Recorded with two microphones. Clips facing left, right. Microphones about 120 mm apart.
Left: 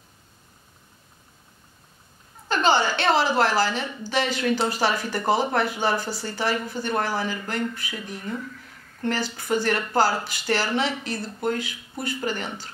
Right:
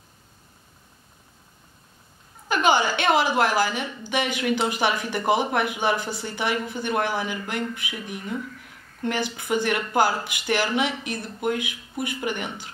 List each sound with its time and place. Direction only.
2.4 s a woman's voice: 10° right (ahead or behind)